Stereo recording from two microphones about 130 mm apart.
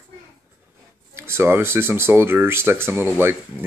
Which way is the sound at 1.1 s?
20° right (ahead or behind).